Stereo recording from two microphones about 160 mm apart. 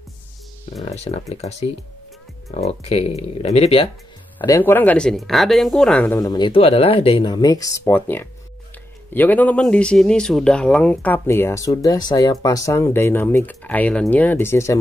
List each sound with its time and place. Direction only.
0.8 s speech: 40° left (ahead or behind)
4.4 s speech: 15° left (ahead or behind)
6.1 s speech: 25° left (ahead or behind)